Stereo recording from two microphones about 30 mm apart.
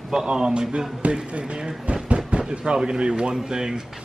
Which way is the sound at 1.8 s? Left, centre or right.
Right.